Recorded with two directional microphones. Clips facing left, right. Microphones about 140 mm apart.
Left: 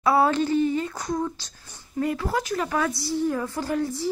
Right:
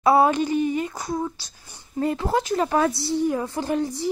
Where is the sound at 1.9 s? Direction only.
25° right (ahead or behind).